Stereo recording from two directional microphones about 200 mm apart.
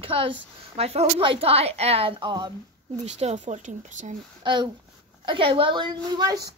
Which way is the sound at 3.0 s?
35° right (ahead or behind).